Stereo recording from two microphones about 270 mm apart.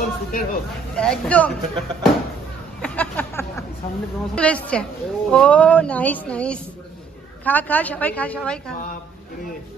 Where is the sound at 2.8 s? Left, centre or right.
Centre.